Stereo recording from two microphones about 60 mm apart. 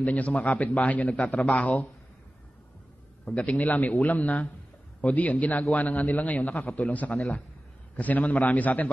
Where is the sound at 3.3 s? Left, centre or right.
Left.